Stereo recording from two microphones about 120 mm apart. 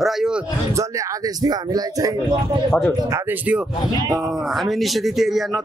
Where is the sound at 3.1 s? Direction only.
15° right (ahead or behind).